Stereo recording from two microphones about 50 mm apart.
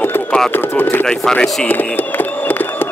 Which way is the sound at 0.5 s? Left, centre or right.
Left.